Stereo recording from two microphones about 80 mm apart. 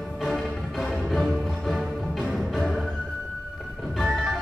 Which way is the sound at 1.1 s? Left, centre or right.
Centre.